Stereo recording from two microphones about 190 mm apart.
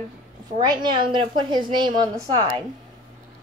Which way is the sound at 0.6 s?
20° right (ahead or behind).